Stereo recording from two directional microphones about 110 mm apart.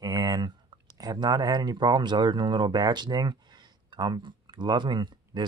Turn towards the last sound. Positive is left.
turn(degrees=-45)  # may be behind; listen again after turning